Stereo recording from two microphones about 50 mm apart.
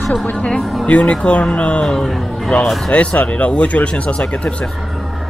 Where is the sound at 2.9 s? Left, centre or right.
Left.